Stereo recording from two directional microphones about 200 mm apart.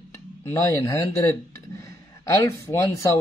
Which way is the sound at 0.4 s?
15° left (ahead or behind).